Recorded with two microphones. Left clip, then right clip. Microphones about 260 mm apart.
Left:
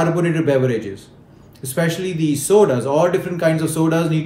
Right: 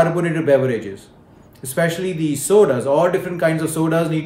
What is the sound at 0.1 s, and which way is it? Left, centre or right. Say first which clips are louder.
Speech: right 1 dB; centre.